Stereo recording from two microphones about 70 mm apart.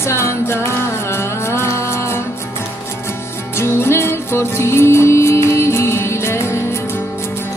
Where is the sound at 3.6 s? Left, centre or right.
Left.